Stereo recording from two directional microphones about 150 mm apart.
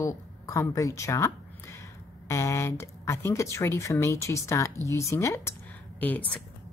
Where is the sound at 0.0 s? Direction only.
20° left (ahead or behind).